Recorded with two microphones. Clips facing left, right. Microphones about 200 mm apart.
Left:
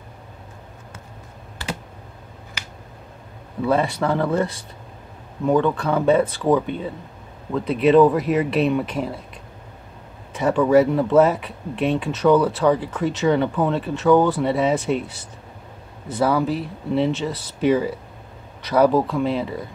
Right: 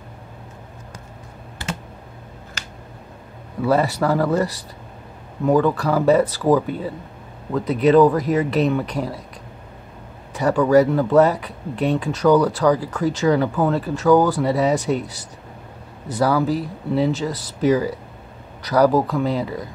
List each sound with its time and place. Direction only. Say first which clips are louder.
3.6 s speech: right 2 dB; 5° right (ahead or behind)
10.3 s speech: right 1 dB; centre (ahead or behind)